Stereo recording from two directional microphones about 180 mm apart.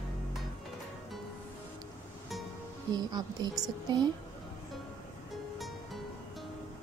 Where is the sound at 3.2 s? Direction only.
20° right (ahead or behind).